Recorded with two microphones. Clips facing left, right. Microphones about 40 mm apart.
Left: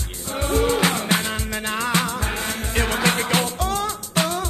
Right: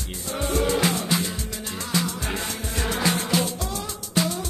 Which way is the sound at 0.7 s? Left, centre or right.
Left.